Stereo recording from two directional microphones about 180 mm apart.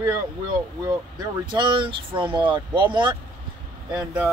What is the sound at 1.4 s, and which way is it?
Speech, 25° right (ahead or behind).